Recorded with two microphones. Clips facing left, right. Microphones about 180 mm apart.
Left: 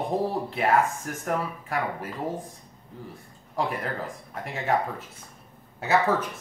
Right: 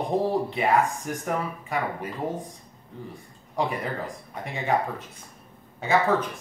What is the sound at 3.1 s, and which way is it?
Speech, centre (ahead or behind).